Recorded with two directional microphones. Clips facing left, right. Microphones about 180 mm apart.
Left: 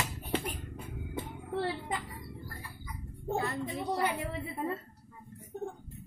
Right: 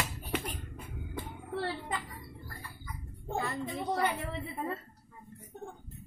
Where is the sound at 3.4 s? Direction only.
5° left (ahead or behind).